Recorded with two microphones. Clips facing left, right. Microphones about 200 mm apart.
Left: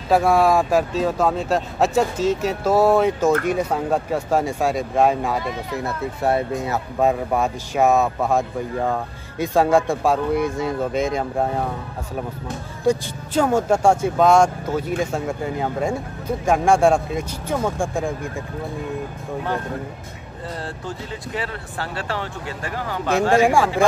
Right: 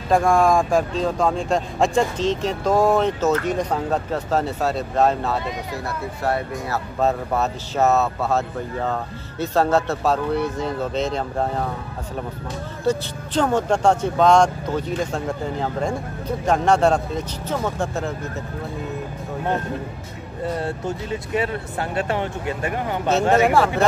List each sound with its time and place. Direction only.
0.1 s speech: 5° left (ahead or behind)
6.2 s speech: 20° left (ahead or behind)
7.0 s speech: 10° left (ahead or behind)
12.8 s speech: 10° left (ahead or behind)
20.5 s speech: 20° right (ahead or behind)
23.3 s speech: 10° left (ahead or behind)